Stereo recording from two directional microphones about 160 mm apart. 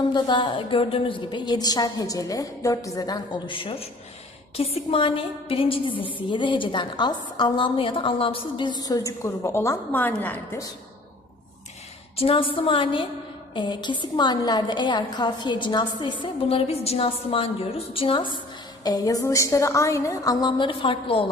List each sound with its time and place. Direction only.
0.1 s a woman's voice: 30° left (ahead or behind); by 10.7 s 15° left (ahead or behind)
12.2 s a woman's voice: 35° left (ahead or behind)